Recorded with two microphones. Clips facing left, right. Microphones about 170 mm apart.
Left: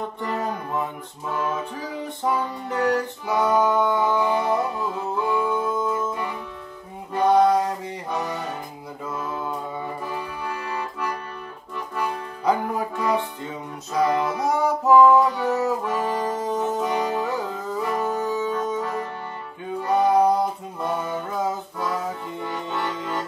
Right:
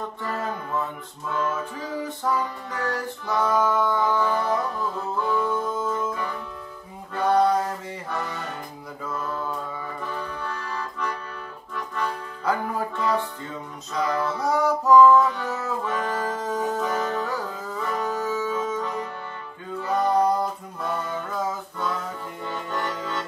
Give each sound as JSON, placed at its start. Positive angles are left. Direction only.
{"t": 0.0, "sound": "music", "side_deg": 15}
{"t": 7.2, "sound": "a sound", "side_deg": 15}
{"t": 7.5, "sound": "music", "side_deg": 15}
{"t": 9.1, "sound": "mantra", "side_deg": 10}
{"t": 9.4, "sound": "mantra", "side_deg": 20}
{"t": 10.0, "sound": "accordion", "side_deg": 10}
{"t": 15.3, "sound": "music", "side_deg": 15}
{"t": 16.5, "sound": "music", "side_deg": 5}
{"t": 17.3, "sound": "music", "side_deg": 20}
{"t": 19.9, "sound": "music", "side_deg": 10}
{"t": 22.4, "sound": "accordion", "side_deg": 15}